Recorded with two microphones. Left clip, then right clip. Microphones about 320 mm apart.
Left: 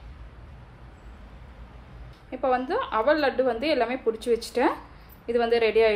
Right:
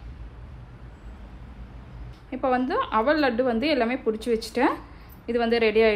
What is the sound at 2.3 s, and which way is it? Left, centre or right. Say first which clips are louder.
A woman's voice: right 1 dB; centre.